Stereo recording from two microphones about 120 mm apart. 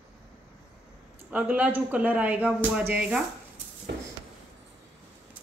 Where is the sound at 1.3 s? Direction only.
10° right (ahead or behind).